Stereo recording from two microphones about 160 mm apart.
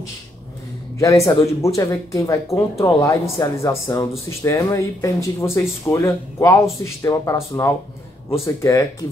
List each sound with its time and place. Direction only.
0.9 s speech: 20° left (ahead or behind)